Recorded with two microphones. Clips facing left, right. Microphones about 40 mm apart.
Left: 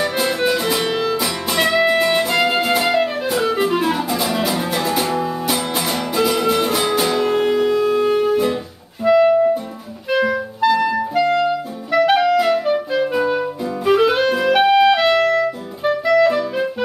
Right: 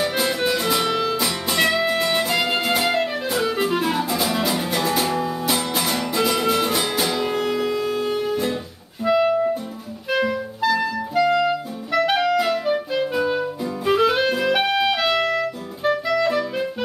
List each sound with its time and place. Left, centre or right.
0.0 s music: centre
7.3 s music: centre
9.0 s clarinet: centre
13.2 s music: centre
14.3 s clarinet: centre
15.1 s music: centre
16.1 s clarinet: centre